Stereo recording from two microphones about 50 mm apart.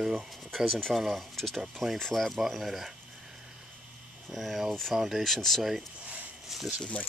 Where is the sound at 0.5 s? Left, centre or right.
Centre.